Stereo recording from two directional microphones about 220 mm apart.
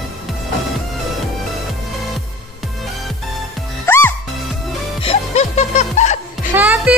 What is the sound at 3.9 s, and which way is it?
Music, 10° left (ahead or behind).